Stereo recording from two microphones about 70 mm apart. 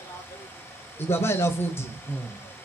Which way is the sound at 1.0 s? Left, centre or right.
Left.